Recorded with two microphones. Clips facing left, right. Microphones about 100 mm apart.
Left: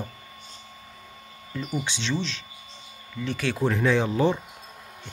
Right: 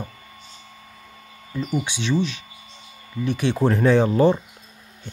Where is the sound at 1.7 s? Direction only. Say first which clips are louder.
Right 5 dB; 15° right (ahead or behind).